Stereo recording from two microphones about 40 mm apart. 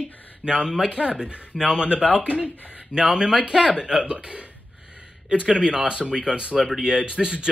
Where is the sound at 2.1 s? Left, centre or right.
Right.